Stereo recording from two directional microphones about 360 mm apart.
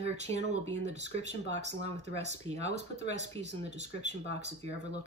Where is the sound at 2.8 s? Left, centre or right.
Left.